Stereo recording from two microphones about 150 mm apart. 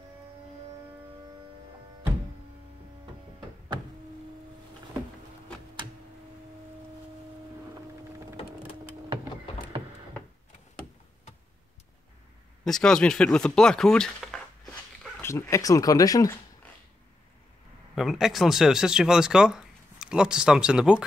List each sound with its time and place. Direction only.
3.3 s a sound: 30° right (ahead or behind)
12.6 s speech: 5° left (ahead or behind)
15.2 s speech: 20° left (ahead or behind)
17.9 s speech: centre (ahead or behind)